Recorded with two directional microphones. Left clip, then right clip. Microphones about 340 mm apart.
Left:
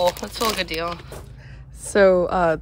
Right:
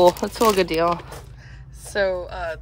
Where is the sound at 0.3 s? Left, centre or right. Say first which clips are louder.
Right 5 dB; centre.